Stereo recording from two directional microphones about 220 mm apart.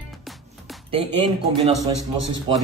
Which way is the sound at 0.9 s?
25° right (ahead or behind).